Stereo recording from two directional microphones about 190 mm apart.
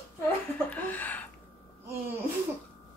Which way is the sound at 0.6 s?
10° left (ahead or behind).